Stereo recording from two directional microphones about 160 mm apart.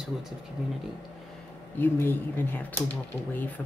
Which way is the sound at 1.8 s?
10° left (ahead or behind).